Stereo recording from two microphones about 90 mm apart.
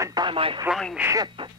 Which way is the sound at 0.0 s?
45° right (ahead or behind).